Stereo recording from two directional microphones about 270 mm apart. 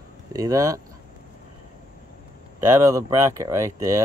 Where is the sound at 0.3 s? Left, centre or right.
Centre.